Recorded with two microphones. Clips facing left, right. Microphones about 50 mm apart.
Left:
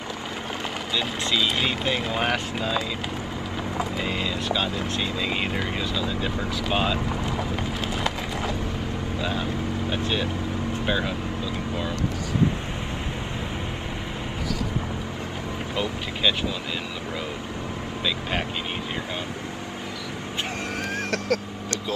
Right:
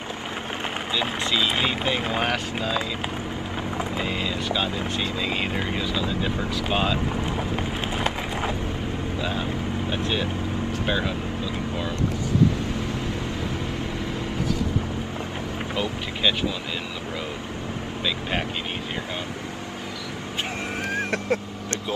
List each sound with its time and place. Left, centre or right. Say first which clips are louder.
0.9 s speech: even; centre
4.0 s speech: even; centre
9.2 s speech: left 1 dB; centre
15.7 s speech: even; centre
20.9 s vehicle: right 1 dB; right